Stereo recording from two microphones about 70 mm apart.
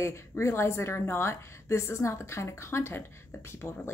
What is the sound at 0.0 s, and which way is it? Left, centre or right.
A woman's voice, left.